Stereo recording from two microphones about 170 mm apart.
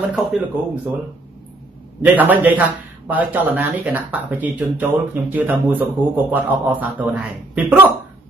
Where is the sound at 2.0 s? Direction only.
10° right (ahead or behind).